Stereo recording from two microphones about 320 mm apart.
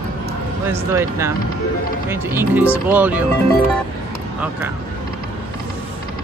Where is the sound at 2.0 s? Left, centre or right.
Centre.